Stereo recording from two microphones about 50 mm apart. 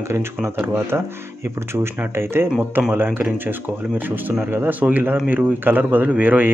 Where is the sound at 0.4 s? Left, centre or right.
Right.